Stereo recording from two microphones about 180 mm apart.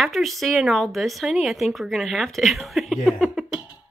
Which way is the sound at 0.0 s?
Centre (ahead or behind).